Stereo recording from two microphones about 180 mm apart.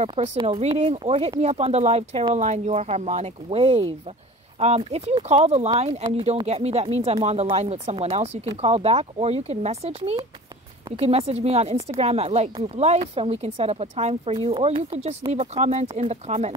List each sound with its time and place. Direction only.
0.0 s speech: 35° right (ahead or behind)